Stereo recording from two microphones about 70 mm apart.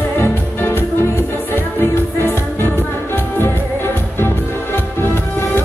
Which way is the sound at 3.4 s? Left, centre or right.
Left.